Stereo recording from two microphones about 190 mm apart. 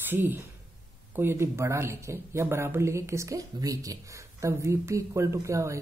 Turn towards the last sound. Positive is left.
turn(degrees=-15)  # may be behind; listen again after turning